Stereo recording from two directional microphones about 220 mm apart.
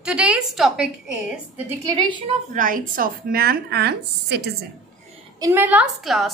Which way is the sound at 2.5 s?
35° right (ahead or behind).